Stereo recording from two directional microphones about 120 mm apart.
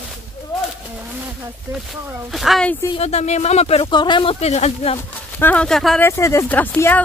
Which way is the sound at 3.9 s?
40° left (ahead or behind).